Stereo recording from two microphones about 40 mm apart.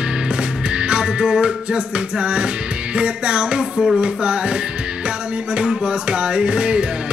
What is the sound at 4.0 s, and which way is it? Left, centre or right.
Speech, right.